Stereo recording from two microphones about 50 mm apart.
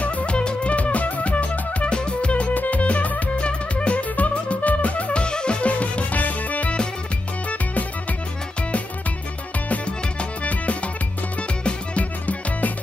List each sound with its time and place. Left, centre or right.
0.0 s music: left
10.4 s music: left